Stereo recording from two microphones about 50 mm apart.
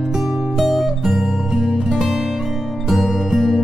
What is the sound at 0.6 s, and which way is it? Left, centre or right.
Music, centre.